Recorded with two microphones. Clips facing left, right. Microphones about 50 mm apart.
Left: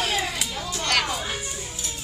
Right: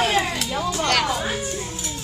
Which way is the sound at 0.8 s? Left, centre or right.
Centre.